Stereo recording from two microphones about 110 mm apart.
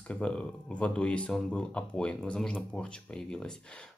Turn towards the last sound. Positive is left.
turn(degrees=5)  # may be behind; listen again after turning